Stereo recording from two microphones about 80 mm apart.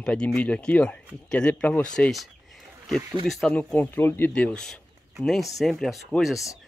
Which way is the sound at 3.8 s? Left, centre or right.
Left.